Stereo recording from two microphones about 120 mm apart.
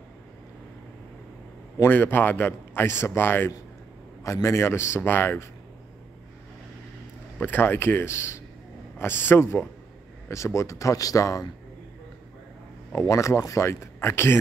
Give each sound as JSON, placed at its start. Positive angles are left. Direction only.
{"t": 1.8, "sound": "a man's voice", "side_deg": 15}
{"t": 7.3, "sound": "a man's voice", "side_deg": 15}
{"t": 13.1, "sound": "a man's voice", "side_deg": 25}